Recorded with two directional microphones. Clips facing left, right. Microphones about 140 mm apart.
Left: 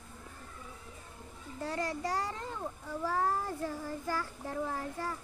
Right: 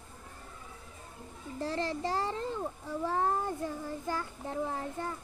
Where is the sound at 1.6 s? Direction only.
30° right (ahead or behind).